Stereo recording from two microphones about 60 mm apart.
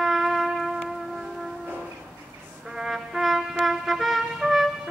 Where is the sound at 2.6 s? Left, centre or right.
Centre.